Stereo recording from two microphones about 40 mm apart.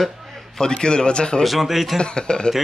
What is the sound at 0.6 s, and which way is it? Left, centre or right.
Speech, centre.